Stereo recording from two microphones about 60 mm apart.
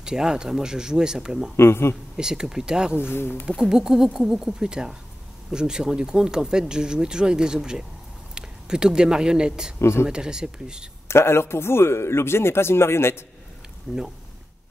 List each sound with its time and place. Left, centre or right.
0.0 s speech: centre
1.6 s speech: left
2.1 s speech: centre
3.0 s speech: left
3.5 s speech: centre
9.8 s speech: left
10.0 s speech: centre
11.1 s speech: left
13.9 s speech: centre